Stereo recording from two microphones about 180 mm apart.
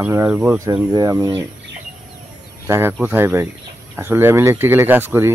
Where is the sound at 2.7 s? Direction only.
15° right (ahead or behind).